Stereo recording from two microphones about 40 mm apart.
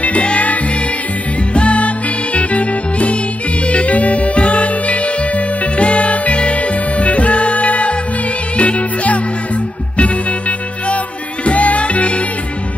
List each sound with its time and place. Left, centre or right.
0.0 s music: left
11.4 s music: left